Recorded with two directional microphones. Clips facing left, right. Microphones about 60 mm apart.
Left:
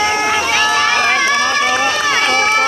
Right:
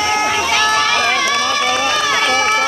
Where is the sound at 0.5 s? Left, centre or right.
Left.